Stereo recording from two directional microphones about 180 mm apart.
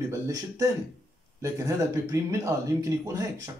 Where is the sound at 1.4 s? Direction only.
20° right (ahead or behind).